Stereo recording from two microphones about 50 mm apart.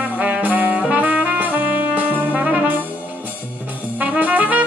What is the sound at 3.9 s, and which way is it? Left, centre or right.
Brass instrument, right.